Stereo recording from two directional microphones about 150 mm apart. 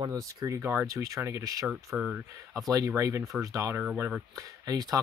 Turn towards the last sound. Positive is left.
turn(degrees=-25)  # may be behind; listen again after turning